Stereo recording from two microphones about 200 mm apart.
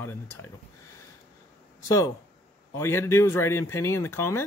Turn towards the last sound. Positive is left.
turn(degrees=10)  # may be behind; listen again after turning